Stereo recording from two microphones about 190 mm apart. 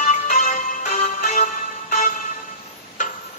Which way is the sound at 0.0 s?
40° left (ahead or behind).